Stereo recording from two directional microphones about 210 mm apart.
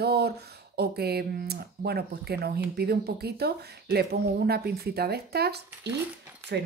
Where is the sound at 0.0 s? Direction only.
50° right (ahead or behind).